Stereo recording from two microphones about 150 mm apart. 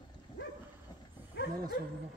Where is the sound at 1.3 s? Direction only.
90° left.